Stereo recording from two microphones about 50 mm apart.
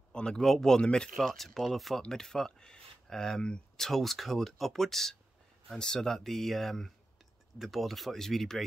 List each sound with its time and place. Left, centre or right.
0.1 s speech: centre
1.2 s speech: centre